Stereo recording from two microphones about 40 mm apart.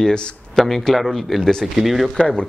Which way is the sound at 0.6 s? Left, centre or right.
Centre.